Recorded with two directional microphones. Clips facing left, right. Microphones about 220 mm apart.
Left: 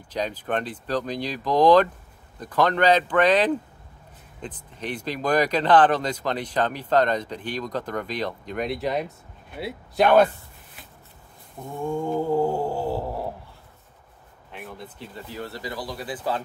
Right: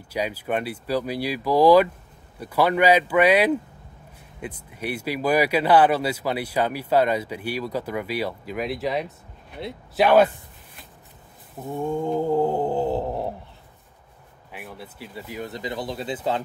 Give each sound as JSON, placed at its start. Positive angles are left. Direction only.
{"t": 0.1, "sound": "speech", "side_deg": -10}
{"t": 11.6, "sound": "speech", "side_deg": -20}
{"t": 14.5, "sound": "speech", "side_deg": -5}